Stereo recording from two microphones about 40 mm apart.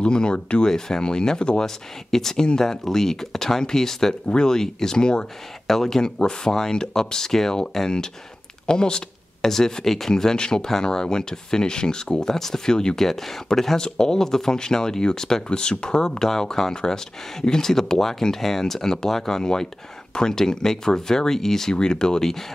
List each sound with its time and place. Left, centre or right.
0.0 s speech: left
5.7 s speech: centre
8.6 s a sound: centre
9.5 s speech: centre